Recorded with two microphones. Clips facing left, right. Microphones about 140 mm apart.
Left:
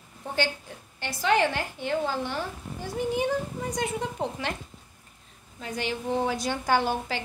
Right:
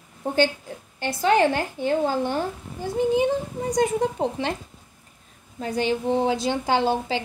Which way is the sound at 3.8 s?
35° right (ahead or behind).